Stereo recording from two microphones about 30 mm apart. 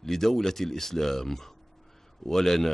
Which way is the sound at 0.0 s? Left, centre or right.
Centre.